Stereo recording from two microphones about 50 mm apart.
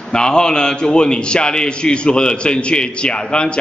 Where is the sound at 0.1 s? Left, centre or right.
Centre.